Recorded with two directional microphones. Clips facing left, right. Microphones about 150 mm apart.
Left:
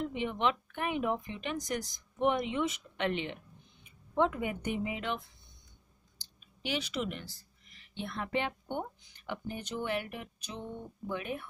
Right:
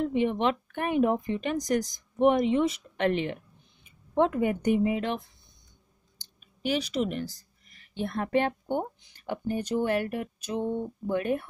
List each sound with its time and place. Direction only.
0.1 s speech: 40° right (ahead or behind)
6.6 s a woman's voice: 40° right (ahead or behind)